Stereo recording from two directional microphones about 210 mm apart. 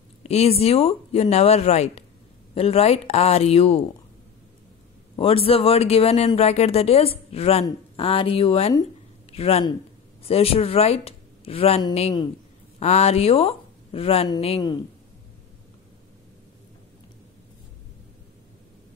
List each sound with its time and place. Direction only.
0.2 s a man's voice: 30° left (ahead or behind)
5.1 s a man's voice: 25° left (ahead or behind)